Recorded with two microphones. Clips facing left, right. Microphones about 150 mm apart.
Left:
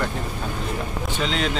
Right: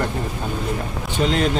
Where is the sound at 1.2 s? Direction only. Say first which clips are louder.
Right 6 dB; 45° right (ahead or behind).